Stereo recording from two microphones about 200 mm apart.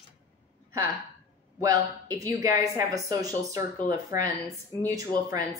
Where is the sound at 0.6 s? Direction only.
15° right (ahead or behind).